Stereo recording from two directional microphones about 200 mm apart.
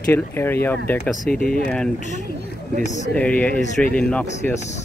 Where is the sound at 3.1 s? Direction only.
5° left (ahead or behind).